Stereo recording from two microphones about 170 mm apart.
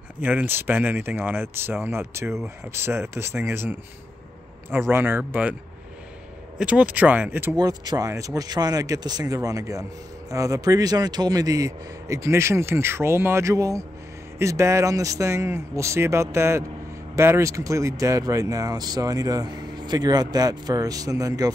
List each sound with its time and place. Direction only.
0.2 s speech: 10° right (ahead or behind)
6.6 s speech: 10° right (ahead or behind)
7.5 s speech: 25° right (ahead or behind)